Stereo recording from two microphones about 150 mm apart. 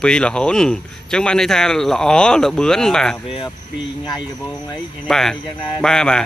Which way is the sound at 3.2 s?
35° left (ahead or behind).